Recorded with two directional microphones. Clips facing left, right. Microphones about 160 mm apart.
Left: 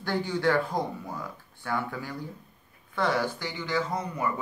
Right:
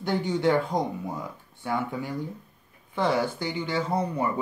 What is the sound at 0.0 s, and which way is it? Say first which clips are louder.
Speech: right 2 dB; 20° right (ahead or behind).